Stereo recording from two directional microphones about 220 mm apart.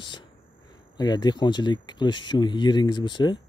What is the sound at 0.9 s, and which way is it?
Speech, 20° left (ahead or behind).